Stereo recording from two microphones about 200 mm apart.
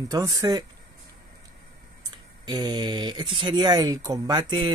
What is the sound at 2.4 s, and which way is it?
Speech, 20° right (ahead or behind).